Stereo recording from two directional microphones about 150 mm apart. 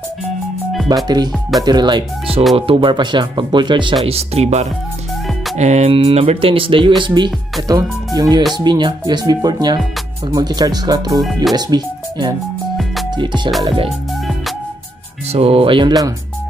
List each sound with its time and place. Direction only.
1.0 s speech: 30° right (ahead or behind)
4.0 s speech: 40° right (ahead or behind)
15.3 s speech: 40° right (ahead or behind)